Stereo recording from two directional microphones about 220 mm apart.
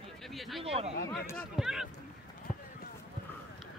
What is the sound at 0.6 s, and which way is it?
Speech, 25° right (ahead or behind).